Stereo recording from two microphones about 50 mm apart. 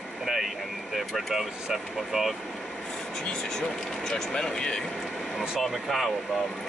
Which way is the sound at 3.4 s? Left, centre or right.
Centre.